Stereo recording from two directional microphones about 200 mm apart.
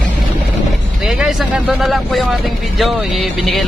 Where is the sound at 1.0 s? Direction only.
5° right (ahead or behind).